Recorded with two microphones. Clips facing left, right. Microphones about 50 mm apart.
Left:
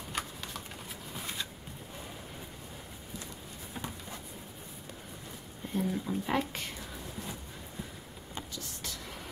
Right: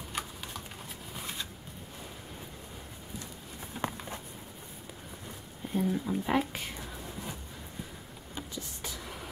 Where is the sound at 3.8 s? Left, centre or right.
Right.